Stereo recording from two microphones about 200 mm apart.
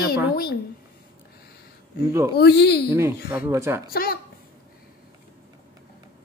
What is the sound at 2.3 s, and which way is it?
Speech, 55° left (ahead or behind).